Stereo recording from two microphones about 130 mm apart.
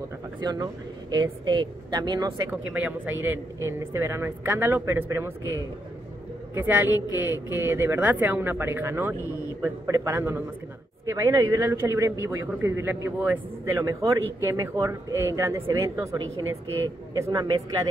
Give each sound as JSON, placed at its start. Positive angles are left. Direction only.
{"t": 0.4, "sound": "a woman's voice", "side_deg": -35}
{"t": 2.6, "sound": "a man's voice", "side_deg": -10}
{"t": 6.5, "sound": "a man's voice", "side_deg": -15}